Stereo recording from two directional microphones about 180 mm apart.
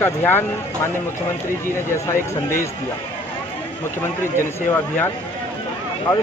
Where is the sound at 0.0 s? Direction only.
10° left (ahead or behind).